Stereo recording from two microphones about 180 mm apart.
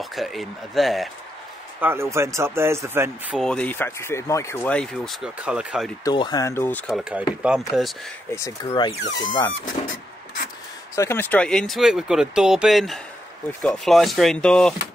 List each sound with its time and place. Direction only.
0.0 s speech: centre (ahead or behind)
1.8 s speech: 15° right (ahead or behind)
3.4 s speech: 5° left (ahead or behind)
6.0 s speech: 20° left (ahead or behind)
6.9 s speech: 5° right (ahead or behind)
8.3 s speech: 15° left (ahead or behind)
11.0 s speech: 10° left (ahead or behind)